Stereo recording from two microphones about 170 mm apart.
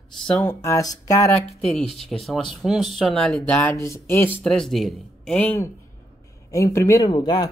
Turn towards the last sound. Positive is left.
turn(degrees=25)  # may be behind; listen again after turning